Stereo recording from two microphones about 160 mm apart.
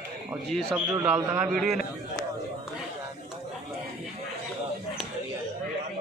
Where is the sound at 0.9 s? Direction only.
15° right (ahead or behind).